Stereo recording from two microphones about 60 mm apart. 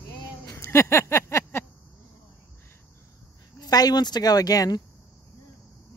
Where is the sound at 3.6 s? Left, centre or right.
Left.